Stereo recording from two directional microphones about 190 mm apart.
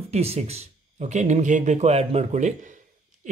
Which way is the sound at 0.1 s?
35° right (ahead or behind).